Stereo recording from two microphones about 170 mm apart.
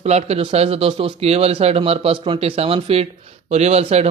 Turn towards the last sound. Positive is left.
turn(degrees=-40)  # may be behind; listen again after turning